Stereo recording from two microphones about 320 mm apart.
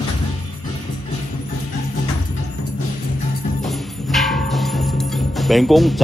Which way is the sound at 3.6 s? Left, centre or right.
Centre.